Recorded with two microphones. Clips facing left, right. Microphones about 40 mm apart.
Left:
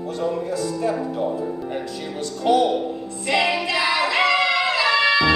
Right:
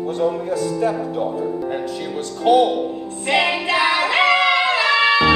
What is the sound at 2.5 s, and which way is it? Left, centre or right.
Speech, right.